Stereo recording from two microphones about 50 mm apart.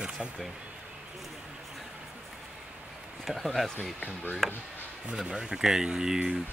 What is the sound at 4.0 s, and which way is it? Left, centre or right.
Speech, left.